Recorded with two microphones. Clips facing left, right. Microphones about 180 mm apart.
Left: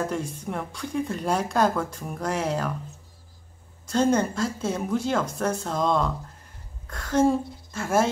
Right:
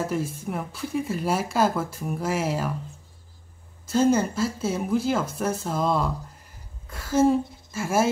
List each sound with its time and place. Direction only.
0.0 s speech: 5° right (ahead or behind)
3.8 s a woman's voice: 5° right (ahead or behind)